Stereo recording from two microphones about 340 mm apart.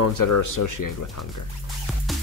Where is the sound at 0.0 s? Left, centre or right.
Left.